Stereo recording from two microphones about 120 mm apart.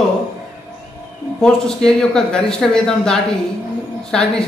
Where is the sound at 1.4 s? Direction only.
5° left (ahead or behind).